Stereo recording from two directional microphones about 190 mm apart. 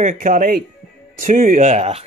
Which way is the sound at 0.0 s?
45° right (ahead or behind).